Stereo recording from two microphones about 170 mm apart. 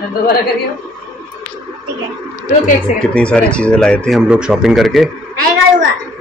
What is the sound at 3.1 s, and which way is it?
Speech, 5° left (ahead or behind).